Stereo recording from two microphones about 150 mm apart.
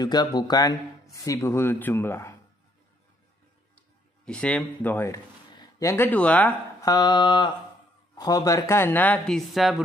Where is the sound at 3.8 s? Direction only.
5° left (ahead or behind).